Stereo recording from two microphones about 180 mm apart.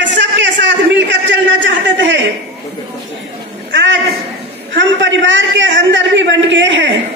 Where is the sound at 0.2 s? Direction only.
85° right.